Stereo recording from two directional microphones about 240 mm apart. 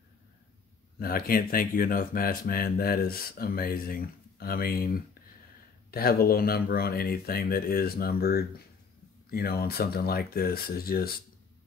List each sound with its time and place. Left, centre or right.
0.9 s speech: left